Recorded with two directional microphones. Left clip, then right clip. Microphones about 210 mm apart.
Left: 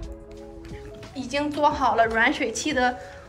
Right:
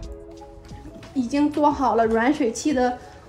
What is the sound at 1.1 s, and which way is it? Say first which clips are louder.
A woman's voice: right 4 dB; 30° right (ahead or behind).